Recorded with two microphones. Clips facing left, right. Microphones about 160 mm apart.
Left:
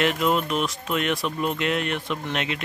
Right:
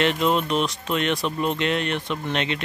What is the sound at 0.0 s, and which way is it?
Speech, 5° left (ahead or behind).